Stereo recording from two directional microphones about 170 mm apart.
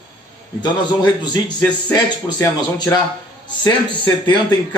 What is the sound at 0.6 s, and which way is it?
Speech, 25° left (ahead or behind).